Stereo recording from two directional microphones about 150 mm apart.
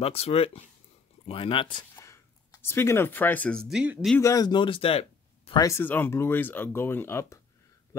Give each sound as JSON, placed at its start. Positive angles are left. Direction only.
{"t": 0.0, "sound": "speech", "side_deg": 40}
{"t": 2.0, "sound": "a sound", "side_deg": 20}
{"t": 3.6, "sound": "speech", "side_deg": -5}
{"t": 4.2, "sound": "speech", "side_deg": 25}
{"t": 5.5, "sound": "speech", "side_deg": 20}
{"t": 7.9, "sound": "a sound", "side_deg": 20}